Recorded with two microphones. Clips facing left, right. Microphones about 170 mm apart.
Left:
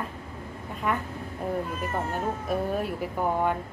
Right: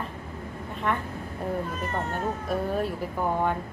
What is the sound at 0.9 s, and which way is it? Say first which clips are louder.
Speech: even; 5° left (ahead or behind).